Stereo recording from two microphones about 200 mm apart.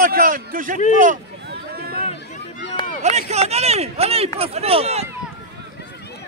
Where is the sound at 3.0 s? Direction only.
35° right (ahead or behind).